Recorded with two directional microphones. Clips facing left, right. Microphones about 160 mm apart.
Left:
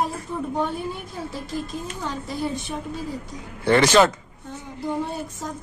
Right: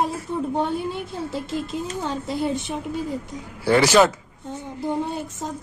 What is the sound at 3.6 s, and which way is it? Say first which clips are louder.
Speech: even; 10° right (ahead or behind).